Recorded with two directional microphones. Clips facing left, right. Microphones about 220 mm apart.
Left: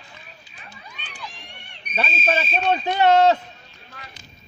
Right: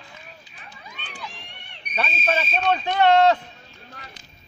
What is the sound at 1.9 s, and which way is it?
Speech, 30° left (ahead or behind).